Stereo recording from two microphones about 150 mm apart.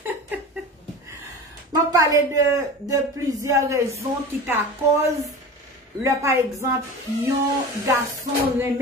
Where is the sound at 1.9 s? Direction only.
20° right (ahead or behind).